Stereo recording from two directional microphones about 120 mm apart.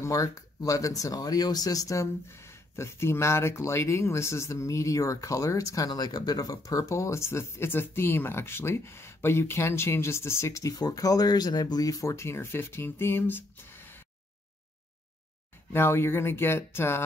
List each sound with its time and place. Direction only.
0.0 s speech: 25° left (ahead or behind)
15.7 s speech: 20° left (ahead or behind)